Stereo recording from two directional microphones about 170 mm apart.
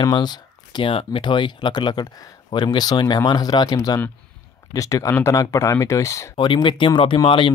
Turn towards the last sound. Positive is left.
turn(degrees=30)  # may be behind; listen again after turning